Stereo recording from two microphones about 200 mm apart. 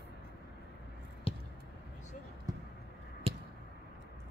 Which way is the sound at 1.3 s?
30° left (ahead or behind).